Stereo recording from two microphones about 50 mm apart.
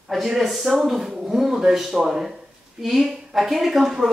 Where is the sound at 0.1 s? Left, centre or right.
Centre.